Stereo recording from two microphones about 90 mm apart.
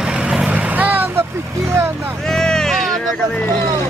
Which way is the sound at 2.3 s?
5° left (ahead or behind).